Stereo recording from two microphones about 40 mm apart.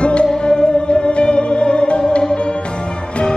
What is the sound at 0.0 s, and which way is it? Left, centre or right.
Music, left.